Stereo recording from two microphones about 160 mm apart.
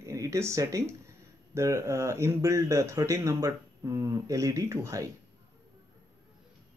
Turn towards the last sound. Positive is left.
turn(degrees=-20)  # may be behind; listen again after turning